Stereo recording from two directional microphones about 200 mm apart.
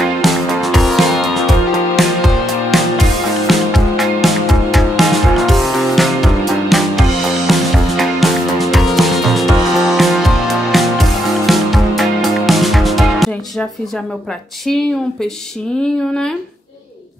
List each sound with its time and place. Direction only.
0.0 s music: centre (ahead or behind)